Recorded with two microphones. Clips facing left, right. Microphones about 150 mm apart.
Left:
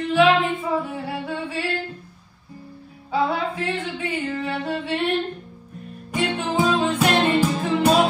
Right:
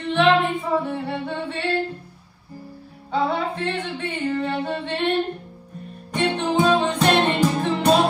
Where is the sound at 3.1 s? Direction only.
5° left (ahead or behind).